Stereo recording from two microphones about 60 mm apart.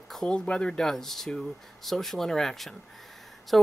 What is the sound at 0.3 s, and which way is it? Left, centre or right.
Speech, centre.